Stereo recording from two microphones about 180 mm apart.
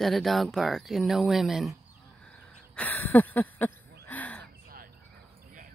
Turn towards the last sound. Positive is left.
turn(degrees=-55)  # may be behind; listen again after turning